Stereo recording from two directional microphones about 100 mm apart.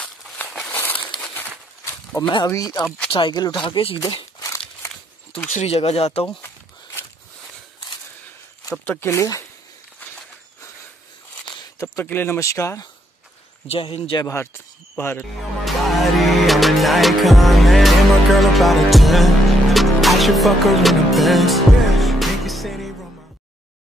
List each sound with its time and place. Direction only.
0.7 s crumpling: 20° left (ahead or behind)
2.2 s speech: 55° left (ahead or behind)
2.5 s speech: 40° left (ahead or behind)
3.1 s speech: 50° left (ahead or behind)
3.6 s speech: 55° left (ahead or behind)
4.4 s a sound: 30° left (ahead or behind)
5.7 s speech: 85° left
6.4 s walk: 25° left (ahead or behind)
8.8 s speech: 15° left (ahead or behind)
9.1 s speech: 30° left (ahead or behind)
11.8 s speech: 25° left (ahead or behind)
13.7 s speech: 70° left (ahead or behind)
14.2 s speech: 25° left (ahead or behind)
15.6 s music: centre (ahead or behind)